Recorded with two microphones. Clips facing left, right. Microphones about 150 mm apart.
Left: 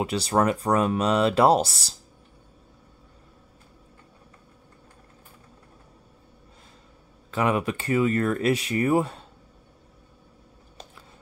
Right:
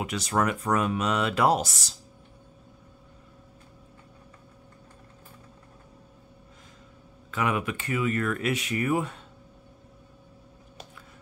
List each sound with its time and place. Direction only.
0.0 s speech: 30° left (ahead or behind)
7.2 s speech: 35° left (ahead or behind)